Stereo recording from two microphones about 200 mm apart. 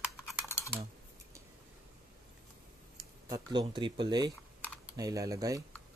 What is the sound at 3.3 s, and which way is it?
Speech, 20° right (ahead or behind).